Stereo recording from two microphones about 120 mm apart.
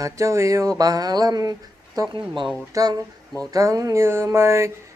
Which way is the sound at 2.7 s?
30° right (ahead or behind).